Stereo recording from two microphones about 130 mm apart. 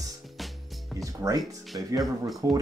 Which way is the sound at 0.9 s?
25° right (ahead or behind).